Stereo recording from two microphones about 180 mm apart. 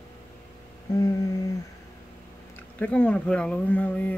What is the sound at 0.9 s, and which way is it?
Humming, 20° left (ahead or behind).